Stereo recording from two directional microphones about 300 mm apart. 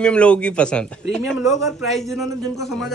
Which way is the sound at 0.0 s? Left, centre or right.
Centre.